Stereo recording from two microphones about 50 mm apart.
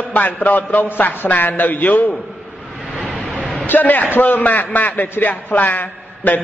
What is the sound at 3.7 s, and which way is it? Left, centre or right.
A man's voice, left.